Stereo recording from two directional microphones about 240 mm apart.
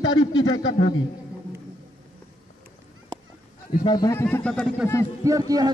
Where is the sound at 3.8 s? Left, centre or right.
Centre.